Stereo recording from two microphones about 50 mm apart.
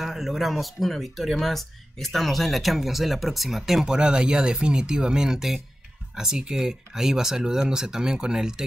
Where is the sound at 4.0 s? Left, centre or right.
Centre.